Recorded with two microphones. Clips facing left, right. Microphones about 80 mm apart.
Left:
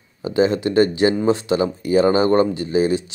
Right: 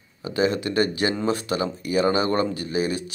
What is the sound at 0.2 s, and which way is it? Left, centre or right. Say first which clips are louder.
Speech: left 5 dB; left.